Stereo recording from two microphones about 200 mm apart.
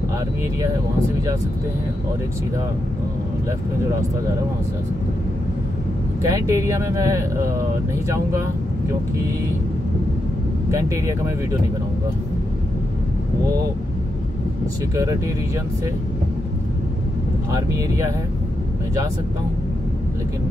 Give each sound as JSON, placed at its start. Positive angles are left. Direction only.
{"t": 6.2, "sound": "speech", "side_deg": -15}
{"t": 10.7, "sound": "speech", "side_deg": -15}
{"t": 17.5, "sound": "speech", "side_deg": -15}